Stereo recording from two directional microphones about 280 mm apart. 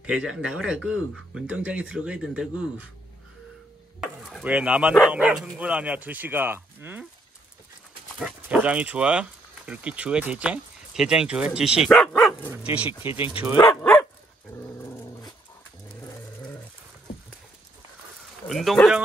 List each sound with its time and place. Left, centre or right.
0.0 s speech: centre
4.0 s dog: centre
5.0 s speech: centre
8.2 s speech: centre
13.1 s speech: centre
13.6 s dog: centre
18.5 s speech: centre